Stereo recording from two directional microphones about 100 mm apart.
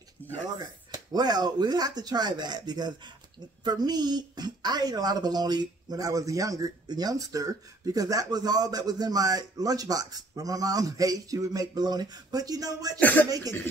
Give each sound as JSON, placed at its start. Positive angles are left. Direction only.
{"t": 0.2, "sound": "a sound", "side_deg": 15}
{"t": 0.6, "sound": "speech", "side_deg": -45}
{"t": 13.0, "sound": "speech", "side_deg": 20}